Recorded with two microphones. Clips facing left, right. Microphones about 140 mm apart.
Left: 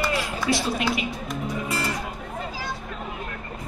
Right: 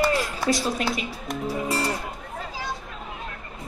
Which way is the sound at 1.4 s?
35° right (ahead or behind).